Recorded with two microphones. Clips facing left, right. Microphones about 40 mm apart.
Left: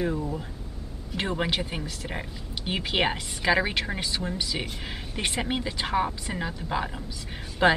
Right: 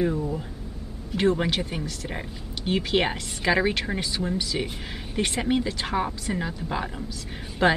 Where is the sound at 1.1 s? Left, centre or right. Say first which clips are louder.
Right 5 dB; centre.